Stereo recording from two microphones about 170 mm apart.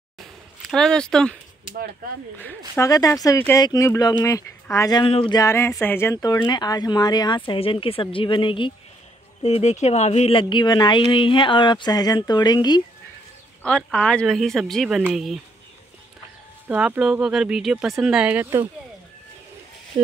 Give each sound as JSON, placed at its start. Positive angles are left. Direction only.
{"t": 0.7, "sound": "speech", "side_deg": 5}
{"t": 2.7, "sound": "speech", "side_deg": 20}
{"t": 5.4, "sound": "speech", "side_deg": 15}
{"t": 9.4, "sound": "speech", "side_deg": 40}
{"t": 13.6, "sound": "speech", "side_deg": 5}
{"t": 16.6, "sound": "speech", "side_deg": -10}